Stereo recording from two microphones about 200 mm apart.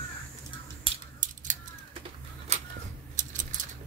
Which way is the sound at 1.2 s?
40° right (ahead or behind).